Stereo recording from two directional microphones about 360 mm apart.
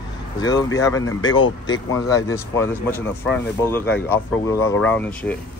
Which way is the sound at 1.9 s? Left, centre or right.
Centre.